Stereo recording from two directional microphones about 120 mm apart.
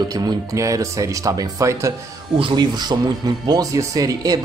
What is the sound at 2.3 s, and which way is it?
Speech, 40° right (ahead or behind).